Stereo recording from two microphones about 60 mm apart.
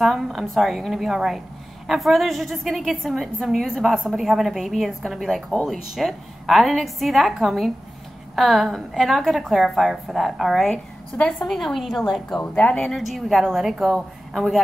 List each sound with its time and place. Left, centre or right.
0.0 s a woman's voice: centre
11.1 s a woman's voice: centre
11.4 s a woman's voice: centre
12.5 s speech: left
13.0 s a woman's voice: centre